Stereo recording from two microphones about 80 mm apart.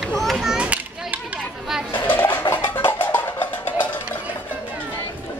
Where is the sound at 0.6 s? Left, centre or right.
Centre.